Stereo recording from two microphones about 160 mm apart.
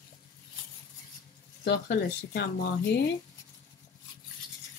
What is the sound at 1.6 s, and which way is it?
Speech, 90° left.